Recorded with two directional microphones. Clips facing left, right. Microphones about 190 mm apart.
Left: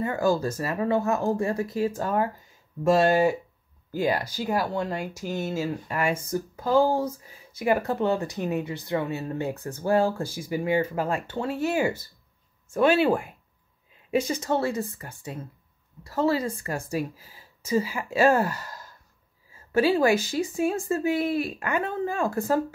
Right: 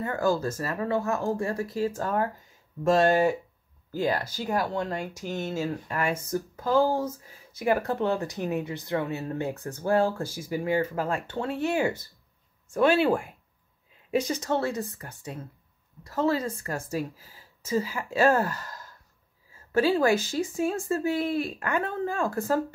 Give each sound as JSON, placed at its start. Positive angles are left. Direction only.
{"t": 0.0, "sound": "speech", "side_deg": 10}